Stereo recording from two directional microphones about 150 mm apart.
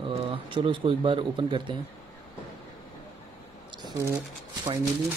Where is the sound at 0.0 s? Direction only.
35° right (ahead or behind).